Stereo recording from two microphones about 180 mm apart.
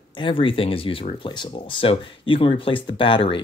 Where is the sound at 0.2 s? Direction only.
30° left (ahead or behind).